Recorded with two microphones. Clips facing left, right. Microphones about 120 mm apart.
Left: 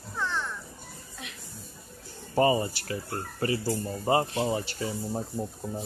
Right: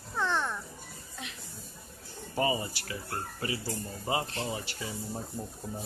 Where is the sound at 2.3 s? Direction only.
40° left (ahead or behind).